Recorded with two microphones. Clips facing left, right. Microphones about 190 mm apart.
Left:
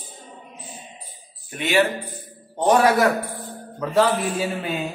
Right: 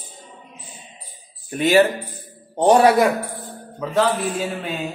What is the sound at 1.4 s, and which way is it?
Speech, 35° right (ahead or behind).